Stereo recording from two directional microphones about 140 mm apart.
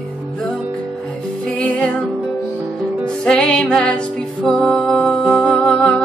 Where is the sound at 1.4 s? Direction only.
10° left (ahead or behind).